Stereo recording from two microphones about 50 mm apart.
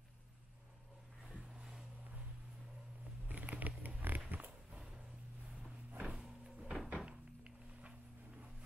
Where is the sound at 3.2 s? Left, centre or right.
Right.